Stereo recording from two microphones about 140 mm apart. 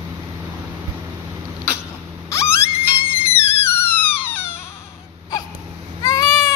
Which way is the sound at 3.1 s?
15° left (ahead or behind).